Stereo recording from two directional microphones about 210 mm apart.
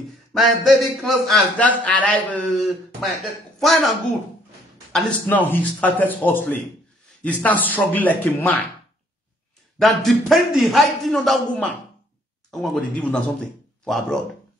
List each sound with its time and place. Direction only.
0.3 s a man's voice: centre (ahead or behind)
9.8 s a man's voice: centre (ahead or behind)